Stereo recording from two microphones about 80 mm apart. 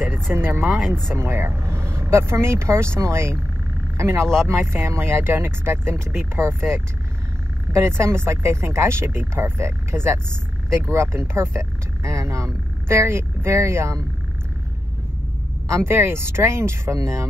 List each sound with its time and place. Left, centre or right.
0.1 s speech: right
0.7 s speech: centre
1.1 s speech: right
15.7 s speech: right